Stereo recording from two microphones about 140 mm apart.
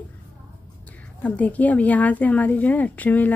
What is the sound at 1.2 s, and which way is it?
Speech, 10° left (ahead or behind).